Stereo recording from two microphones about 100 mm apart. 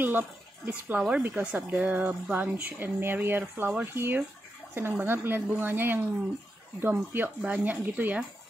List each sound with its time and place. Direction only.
0.0 s speech: 20° right (ahead or behind)